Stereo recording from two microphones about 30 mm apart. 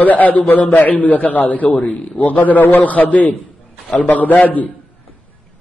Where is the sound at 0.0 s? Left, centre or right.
Left.